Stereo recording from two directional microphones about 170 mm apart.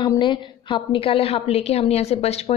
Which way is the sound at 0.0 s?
30° left (ahead or behind).